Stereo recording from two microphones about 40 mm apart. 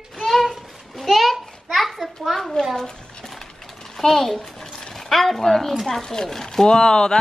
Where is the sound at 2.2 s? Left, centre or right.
Centre.